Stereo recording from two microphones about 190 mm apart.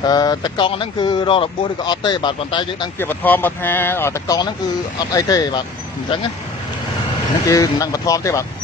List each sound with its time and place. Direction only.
0.0 s speech: 20° left (ahead or behind)
3.0 s speech: 10° left (ahead or behind)
7.4 s speech: 15° left (ahead or behind)